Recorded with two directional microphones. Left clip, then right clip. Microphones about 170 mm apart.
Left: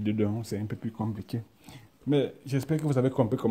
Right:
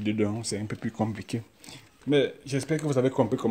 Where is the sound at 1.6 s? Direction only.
Centre (ahead or behind).